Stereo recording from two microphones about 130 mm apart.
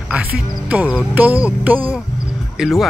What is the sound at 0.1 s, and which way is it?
Speech, 10° right (ahead or behind).